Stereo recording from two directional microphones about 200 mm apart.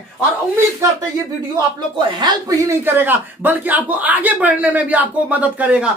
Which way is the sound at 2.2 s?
20° right (ahead or behind).